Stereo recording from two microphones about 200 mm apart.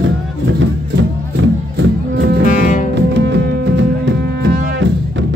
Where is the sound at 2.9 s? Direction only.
60° right (ahead or behind).